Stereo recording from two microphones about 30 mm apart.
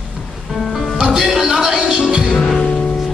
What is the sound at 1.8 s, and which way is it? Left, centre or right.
Music, right.